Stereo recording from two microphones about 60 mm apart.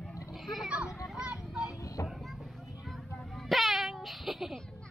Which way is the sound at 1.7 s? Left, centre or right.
Left.